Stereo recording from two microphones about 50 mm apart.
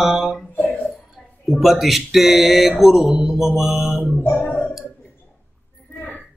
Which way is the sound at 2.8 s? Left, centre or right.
Centre.